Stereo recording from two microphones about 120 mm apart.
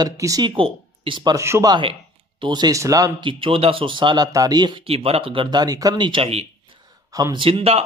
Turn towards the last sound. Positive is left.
turn(degrees=-55)  # may be behind; listen again after turning